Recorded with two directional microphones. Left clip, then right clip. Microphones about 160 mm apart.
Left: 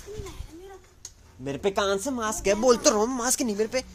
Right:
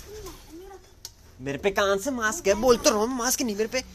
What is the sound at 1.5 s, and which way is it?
Speech, 15° left (ahead or behind).